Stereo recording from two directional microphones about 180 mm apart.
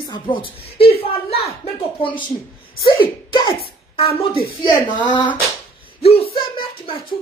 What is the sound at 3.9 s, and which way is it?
A woman's voice, 30° left (ahead or behind).